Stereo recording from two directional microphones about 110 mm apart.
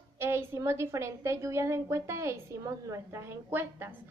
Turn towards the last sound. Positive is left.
turn(degrees=-20)  # may be behind; listen again after turning